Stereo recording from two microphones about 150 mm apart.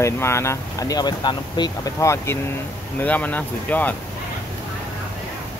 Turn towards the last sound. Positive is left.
turn(degrees=10)  # may be behind; listen again after turning